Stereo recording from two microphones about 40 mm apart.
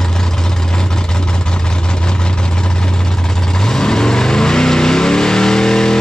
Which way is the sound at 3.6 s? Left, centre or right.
Centre.